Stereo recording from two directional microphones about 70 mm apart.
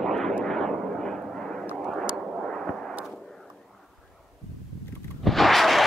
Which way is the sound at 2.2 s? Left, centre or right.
Centre.